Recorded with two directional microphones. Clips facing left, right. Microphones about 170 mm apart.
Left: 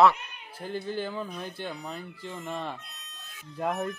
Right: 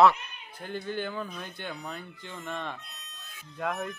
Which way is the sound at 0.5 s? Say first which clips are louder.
Left 2 dB; 35° left (ahead or behind).